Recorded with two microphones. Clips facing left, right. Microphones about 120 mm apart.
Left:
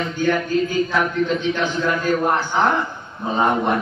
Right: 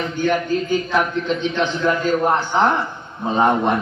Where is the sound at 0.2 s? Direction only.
20° right (ahead or behind).